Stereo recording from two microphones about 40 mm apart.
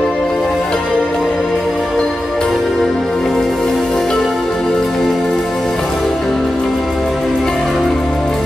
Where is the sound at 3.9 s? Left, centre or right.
Centre.